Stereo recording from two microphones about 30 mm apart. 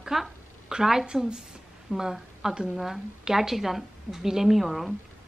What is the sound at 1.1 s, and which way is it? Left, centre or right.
A woman's voice, centre.